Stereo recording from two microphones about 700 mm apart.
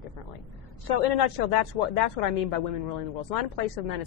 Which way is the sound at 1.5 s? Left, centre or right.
Left.